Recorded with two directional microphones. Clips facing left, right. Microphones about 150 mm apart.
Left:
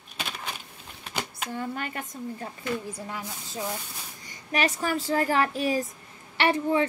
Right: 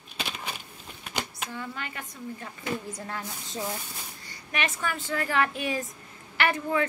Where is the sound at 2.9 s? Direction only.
10° left (ahead or behind).